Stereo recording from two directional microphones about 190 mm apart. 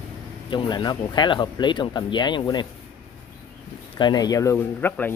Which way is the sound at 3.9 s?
20° left (ahead or behind).